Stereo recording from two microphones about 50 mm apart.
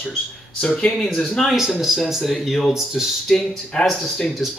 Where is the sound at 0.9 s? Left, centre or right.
Centre.